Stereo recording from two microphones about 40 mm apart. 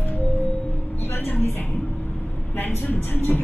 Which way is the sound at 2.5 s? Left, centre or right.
Left.